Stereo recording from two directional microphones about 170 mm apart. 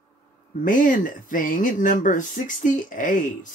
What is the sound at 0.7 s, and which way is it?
Speech, 50° left (ahead or behind).